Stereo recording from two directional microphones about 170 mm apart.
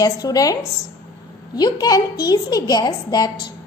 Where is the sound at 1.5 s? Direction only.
25° left (ahead or behind).